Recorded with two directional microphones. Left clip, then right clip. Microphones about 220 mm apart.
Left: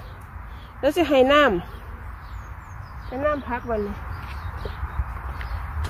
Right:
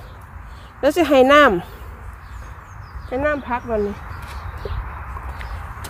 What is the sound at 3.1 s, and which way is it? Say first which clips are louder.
Speech: right 4 dB; 55° right (ahead or behind).